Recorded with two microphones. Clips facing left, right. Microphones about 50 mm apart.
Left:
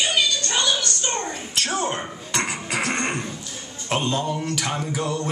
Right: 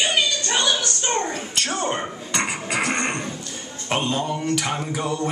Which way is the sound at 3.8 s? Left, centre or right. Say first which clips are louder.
Even; centre.